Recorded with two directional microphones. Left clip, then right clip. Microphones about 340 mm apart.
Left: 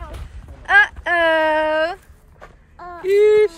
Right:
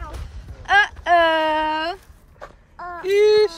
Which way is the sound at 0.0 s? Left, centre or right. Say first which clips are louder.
Even; centre.